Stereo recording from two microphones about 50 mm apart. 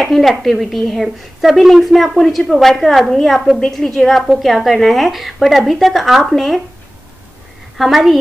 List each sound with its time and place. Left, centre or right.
0.0 s a woman's voice: centre
7.7 s a woman's voice: centre